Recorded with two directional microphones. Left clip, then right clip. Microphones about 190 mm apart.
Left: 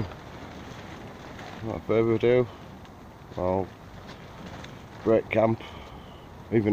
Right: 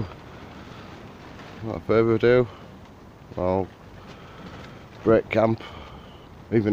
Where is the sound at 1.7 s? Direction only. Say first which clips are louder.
Right 4 dB; 25° right (ahead or behind).